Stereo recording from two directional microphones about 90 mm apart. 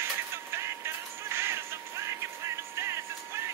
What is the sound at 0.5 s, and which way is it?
Music, 30° right (ahead or behind).